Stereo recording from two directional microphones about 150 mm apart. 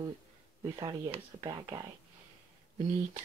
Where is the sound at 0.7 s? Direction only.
25° right (ahead or behind).